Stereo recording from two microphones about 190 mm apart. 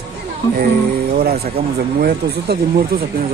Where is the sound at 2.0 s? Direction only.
55° right (ahead or behind).